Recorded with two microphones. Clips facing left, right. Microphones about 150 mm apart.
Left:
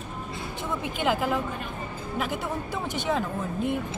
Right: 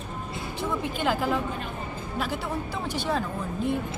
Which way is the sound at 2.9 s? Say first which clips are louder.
Left 1 dB; 20° left (ahead or behind).